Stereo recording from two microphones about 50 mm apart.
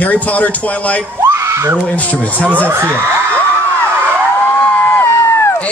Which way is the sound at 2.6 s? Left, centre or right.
Right.